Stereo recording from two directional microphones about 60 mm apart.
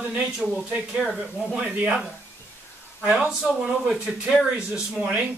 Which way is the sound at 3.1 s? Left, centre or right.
Centre.